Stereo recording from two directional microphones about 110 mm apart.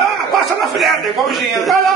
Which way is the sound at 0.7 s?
Centre (ahead or behind).